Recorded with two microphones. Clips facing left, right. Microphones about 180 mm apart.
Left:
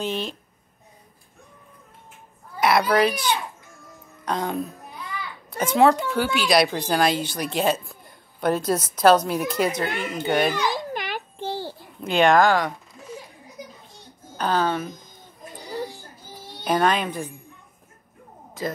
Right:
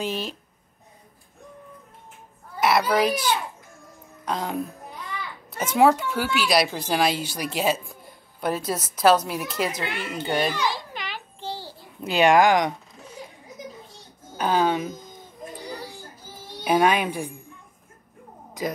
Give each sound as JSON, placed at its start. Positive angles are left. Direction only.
{"t": 0.0, "sound": "speech", "side_deg": -5}
{"t": 2.6, "sound": "speech", "side_deg": -5}
{"t": 4.2, "sound": "music", "side_deg": -5}
{"t": 5.6, "sound": "speech", "side_deg": -5}
{"t": 10.7, "sound": "babbling", "side_deg": 50}
{"t": 12.0, "sound": "speech", "side_deg": -5}
{"t": 14.3, "sound": "speech", "side_deg": -10}
{"t": 16.6, "sound": "speech", "side_deg": -10}
{"t": 18.6, "sound": "speech", "side_deg": -15}